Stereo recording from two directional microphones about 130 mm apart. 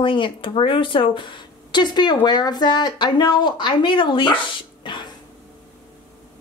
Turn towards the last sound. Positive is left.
turn(degrees=40)  # may be behind; listen again after turning